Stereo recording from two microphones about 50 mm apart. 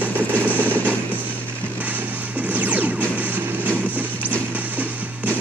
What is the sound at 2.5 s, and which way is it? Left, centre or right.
Music, right.